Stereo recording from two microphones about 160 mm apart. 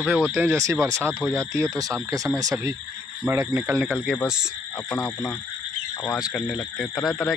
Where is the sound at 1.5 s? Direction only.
20° right (ahead or behind).